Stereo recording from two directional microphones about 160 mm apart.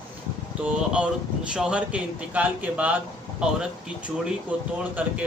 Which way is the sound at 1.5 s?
5° right (ahead or behind).